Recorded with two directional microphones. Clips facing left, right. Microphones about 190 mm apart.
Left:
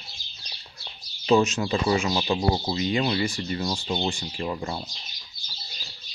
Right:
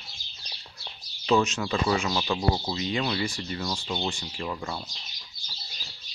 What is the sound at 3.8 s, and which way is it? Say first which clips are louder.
Speech: left 4 dB; 30° left (ahead or behind).